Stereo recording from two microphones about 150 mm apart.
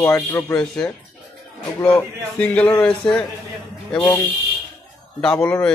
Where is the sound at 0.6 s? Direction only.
5° left (ahead or behind).